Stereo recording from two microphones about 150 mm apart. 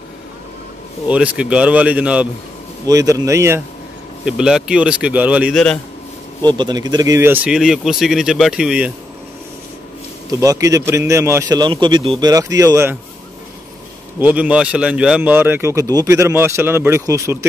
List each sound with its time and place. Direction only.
1.0 s speech: 10° right (ahead or behind)
2.9 s a man's voice: 25° right (ahead or behind)
4.2 s speech: 5° right (ahead or behind)
6.4 s speech: 30° right (ahead or behind); by 8.9 s 5° right (ahead or behind)
10.4 s a man's voice: 20° right (ahead or behind)
12.2 s a man's voice: 25° right (ahead or behind)
14.2 s speech: 10° right (ahead or behind)